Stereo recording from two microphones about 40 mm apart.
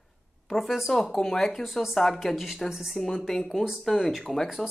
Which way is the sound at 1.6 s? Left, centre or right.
Centre.